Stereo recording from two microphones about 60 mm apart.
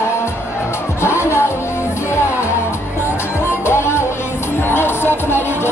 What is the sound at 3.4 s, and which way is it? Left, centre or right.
Music, left.